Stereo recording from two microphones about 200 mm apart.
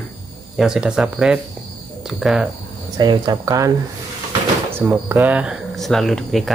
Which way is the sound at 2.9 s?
20° right (ahead or behind).